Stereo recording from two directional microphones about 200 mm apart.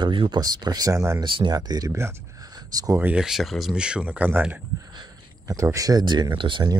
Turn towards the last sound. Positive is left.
turn(degrees=-20)  # may be behind; listen again after turning